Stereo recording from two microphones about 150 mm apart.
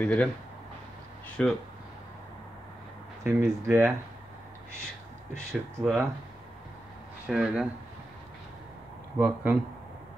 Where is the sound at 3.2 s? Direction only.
15° right (ahead or behind).